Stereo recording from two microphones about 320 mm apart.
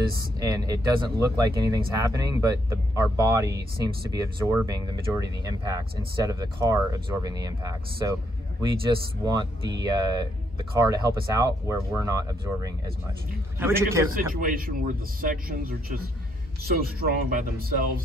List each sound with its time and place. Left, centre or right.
0.4 s speech: centre
14.1 s speech: right